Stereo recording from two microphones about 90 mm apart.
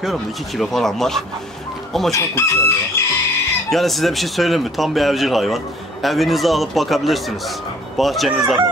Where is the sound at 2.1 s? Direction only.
35° left (ahead or behind).